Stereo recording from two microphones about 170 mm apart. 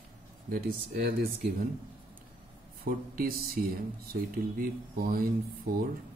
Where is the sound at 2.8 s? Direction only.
60° right (ahead or behind).